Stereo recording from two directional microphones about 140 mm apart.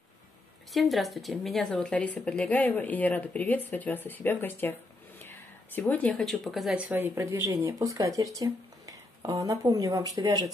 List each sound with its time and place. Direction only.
0.7 s a woman's voice: centre (ahead or behind); by 10.5 s 30° right (ahead or behind)